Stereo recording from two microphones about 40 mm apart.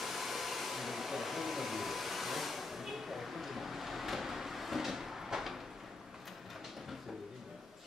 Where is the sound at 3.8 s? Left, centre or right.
Centre.